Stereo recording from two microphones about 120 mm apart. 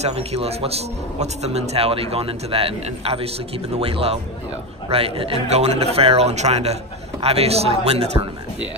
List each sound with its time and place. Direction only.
0.0 s a man's voice: 60° right (ahead or behind)